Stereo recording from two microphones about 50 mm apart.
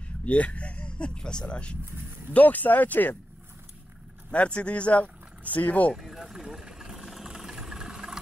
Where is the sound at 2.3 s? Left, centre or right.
Left.